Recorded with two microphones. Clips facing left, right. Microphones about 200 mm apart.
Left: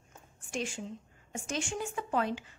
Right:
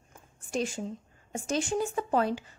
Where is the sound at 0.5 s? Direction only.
40° right (ahead or behind).